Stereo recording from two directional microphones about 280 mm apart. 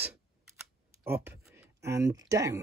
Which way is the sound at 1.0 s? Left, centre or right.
Centre.